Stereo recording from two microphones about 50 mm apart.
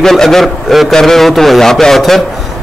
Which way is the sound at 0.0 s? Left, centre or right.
Centre.